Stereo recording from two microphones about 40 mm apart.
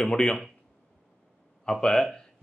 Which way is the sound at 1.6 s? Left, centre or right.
Centre.